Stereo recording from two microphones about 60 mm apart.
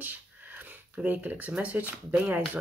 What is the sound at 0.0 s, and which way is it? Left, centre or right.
Speech, right.